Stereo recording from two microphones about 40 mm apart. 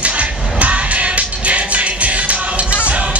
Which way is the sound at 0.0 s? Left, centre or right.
Right.